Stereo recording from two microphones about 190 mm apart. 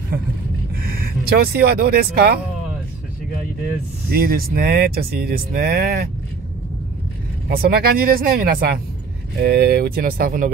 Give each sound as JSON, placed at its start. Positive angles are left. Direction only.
{"t": 0.9, "sound": "speech", "side_deg": -55}
{"t": 4.1, "sound": "speech", "side_deg": -50}
{"t": 7.4, "sound": "speech", "side_deg": -55}